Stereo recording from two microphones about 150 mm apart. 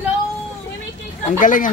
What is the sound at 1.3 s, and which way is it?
Speech, 60° left (ahead or behind).